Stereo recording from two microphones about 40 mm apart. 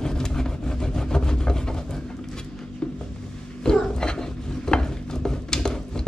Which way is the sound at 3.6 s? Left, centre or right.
Centre.